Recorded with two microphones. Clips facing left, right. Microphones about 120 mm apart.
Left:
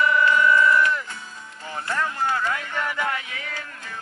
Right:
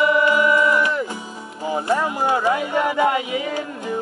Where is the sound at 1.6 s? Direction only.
15° right (ahead or behind).